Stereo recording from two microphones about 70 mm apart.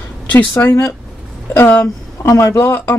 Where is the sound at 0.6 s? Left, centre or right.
Left.